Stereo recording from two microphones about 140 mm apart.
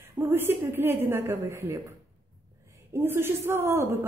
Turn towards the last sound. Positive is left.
turn(degrees=-20)  # may be behind; listen again after turning